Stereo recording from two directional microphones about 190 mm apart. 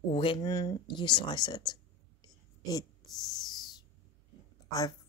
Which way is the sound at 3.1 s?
Centre (ahead or behind).